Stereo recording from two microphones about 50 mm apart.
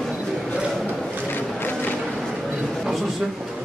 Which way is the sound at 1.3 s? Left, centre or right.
Left.